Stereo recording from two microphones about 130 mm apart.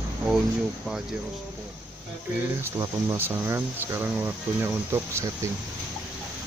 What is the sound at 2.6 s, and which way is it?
Speech, 20° right (ahead or behind).